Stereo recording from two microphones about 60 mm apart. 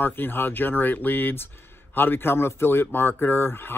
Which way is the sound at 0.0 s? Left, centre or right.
Left.